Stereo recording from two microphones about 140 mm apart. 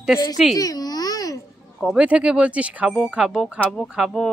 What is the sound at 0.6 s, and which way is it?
Speech, 25° left (ahead or behind).